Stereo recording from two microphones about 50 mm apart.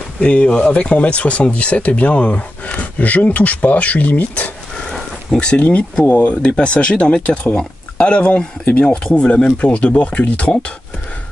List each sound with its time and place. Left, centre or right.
0.2 s speech: left